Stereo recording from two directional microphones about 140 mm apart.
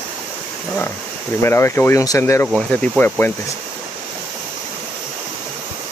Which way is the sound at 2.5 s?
10° left (ahead or behind).